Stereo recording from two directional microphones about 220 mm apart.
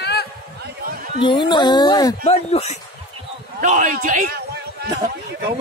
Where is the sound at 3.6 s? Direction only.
35° right (ahead or behind).